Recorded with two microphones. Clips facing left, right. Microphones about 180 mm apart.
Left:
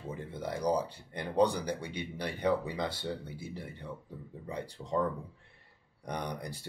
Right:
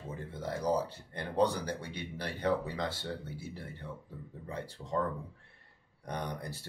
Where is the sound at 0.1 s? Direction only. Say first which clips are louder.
Left 1 dB; 15° left (ahead or behind).